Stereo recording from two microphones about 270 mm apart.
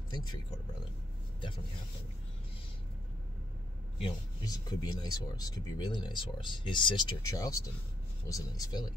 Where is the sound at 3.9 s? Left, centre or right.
Centre.